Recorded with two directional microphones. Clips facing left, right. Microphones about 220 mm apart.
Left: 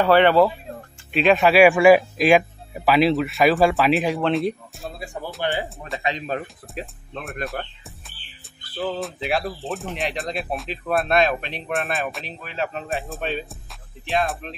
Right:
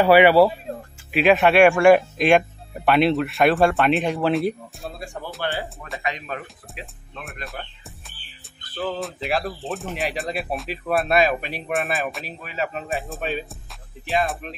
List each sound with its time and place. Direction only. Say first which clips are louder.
0.0 s speech: right 2 dB; 10° right (ahead or behind); by 5.7 s 15° left (ahead or behind)
6.0 s speech: left 4 dB; 30° left (ahead or behind)
6.7 s speech: left 7 dB; centre (ahead or behind)
7.6 s speech: left 4 dB; 50° left (ahead or behind)
8.7 s speech: left 1 dB; centre (ahead or behind)